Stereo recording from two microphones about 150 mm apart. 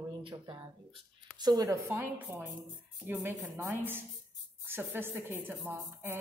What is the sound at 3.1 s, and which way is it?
A woman's voice, 15° right (ahead or behind).